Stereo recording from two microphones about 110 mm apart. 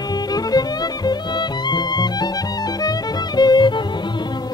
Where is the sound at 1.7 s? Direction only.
40° left (ahead or behind).